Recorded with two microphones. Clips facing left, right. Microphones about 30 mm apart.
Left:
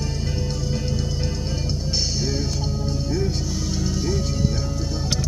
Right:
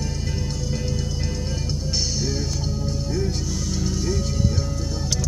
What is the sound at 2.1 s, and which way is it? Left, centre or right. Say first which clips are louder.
Music: left 1 dB; centre.